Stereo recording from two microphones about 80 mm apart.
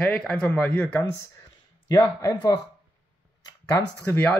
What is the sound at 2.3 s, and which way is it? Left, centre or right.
Speech, left.